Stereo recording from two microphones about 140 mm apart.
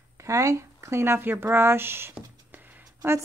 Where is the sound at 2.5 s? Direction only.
10° right (ahead or behind).